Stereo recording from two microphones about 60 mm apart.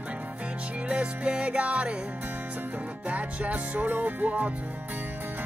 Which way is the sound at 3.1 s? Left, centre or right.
Right.